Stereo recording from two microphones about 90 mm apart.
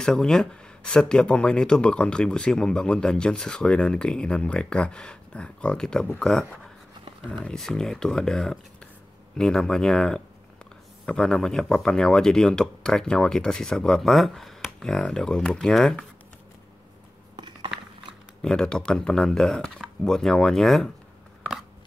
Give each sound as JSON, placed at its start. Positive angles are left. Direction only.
{"t": 0.0, "sound": "speech", "side_deg": 5}
{"t": 17.4, "sound": "a sound", "side_deg": -60}
{"t": 18.4, "sound": "speech", "side_deg": 10}